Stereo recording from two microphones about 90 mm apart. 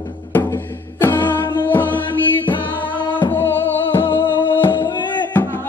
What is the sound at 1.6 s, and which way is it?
Music, 20° left (ahead or behind).